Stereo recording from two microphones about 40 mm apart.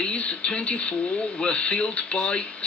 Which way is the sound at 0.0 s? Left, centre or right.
Left.